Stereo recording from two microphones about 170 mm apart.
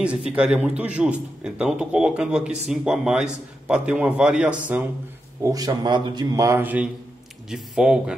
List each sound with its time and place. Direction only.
0.3 s speech: 5° right (ahead or behind)
5.4 s speech: 20° right (ahead or behind); by 8.0 s 5° right (ahead or behind)